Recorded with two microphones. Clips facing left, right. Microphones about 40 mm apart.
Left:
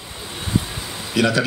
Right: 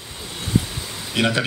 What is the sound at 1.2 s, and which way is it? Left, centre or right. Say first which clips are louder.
Speech: left 2 dB; right.